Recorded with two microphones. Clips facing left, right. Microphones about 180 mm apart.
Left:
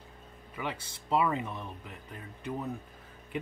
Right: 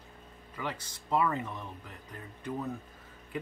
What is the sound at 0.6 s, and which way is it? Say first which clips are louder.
Speech: left 1 dB; 20° left (ahead or behind).